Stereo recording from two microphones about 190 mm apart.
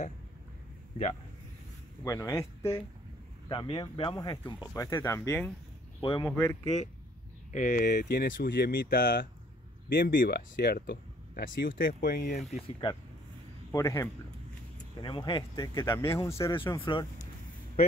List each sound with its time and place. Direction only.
2.0 s speech: 15° left (ahead or behind)
5.9 s speech: 25° left (ahead or behind)
7.5 s speech: 45° left (ahead or behind)
13.7 s speech: 15° left (ahead or behind)